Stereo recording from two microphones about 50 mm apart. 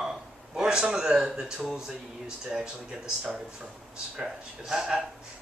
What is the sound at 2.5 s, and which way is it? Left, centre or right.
Speech, centre.